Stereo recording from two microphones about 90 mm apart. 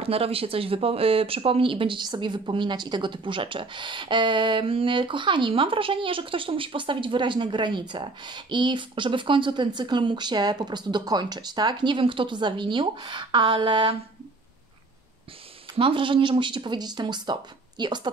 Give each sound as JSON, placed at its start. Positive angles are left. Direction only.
{"t": 0.0, "sound": "speech", "side_deg": -90}
{"t": 2.0, "sound": "speech", "side_deg": -60}
{"t": 15.8, "sound": "speech", "side_deg": -70}